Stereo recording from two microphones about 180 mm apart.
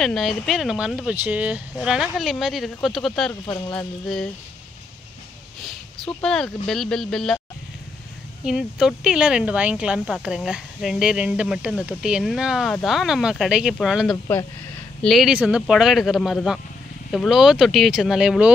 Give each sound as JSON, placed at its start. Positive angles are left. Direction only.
{"t": 0.0, "sound": "speech", "side_deg": 0}
{"t": 3.5, "sound": "a sound", "side_deg": 15}
{"t": 5.6, "sound": "speech", "side_deg": 5}
{"t": 8.5, "sound": "speech", "side_deg": -5}